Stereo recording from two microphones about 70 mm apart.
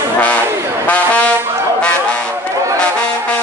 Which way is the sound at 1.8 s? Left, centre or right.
Centre.